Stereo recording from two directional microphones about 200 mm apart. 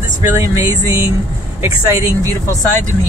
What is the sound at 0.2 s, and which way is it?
Speech, 15° right (ahead or behind).